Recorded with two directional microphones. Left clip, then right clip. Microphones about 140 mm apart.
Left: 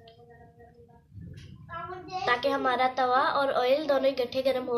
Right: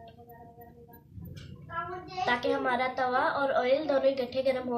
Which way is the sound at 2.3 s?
40° left (ahead or behind).